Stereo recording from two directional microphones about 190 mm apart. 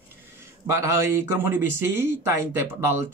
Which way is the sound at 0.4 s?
15° right (ahead or behind).